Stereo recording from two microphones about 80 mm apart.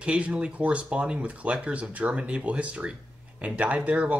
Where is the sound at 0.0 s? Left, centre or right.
Centre.